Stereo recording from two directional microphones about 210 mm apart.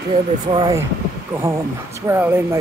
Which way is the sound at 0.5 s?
20° right (ahead or behind).